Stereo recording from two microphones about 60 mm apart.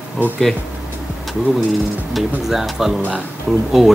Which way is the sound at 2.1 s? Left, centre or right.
Centre.